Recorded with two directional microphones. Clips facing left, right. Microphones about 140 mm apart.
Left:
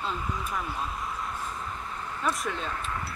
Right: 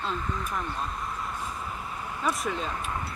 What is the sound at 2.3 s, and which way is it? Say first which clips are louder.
Speech: right 2 dB; centre (ahead or behind).